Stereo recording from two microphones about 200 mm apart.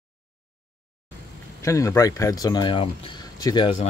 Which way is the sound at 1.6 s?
15° left (ahead or behind).